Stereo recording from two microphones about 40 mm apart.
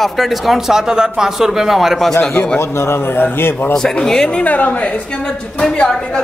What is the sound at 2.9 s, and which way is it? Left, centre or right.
Speech, left.